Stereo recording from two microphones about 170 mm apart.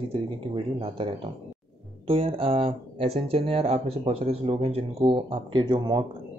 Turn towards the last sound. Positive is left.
turn(degrees=-25)  # may be behind; listen again after turning